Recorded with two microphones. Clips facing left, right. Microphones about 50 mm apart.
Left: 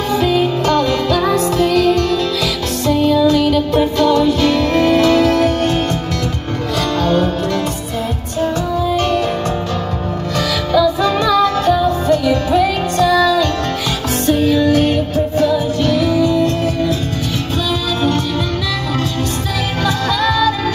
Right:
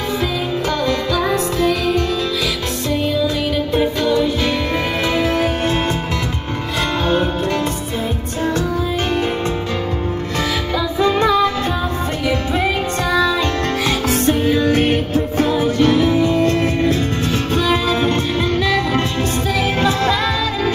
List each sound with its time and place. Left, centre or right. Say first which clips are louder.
1.2 s music: left 3 dB; centre
3.3 s music: left 6 dB; centre
10.7 s music: left 5 dB; right
16.3 s music: even; right
17.6 s music: even; right
19.8 s music: left 2 dB; right